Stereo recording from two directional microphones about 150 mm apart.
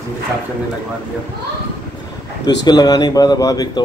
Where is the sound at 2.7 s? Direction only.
25° left (ahead or behind).